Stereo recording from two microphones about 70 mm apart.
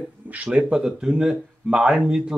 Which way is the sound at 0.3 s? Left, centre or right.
Centre.